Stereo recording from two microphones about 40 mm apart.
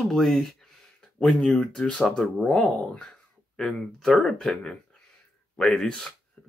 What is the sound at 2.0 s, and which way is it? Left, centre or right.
Speech, centre.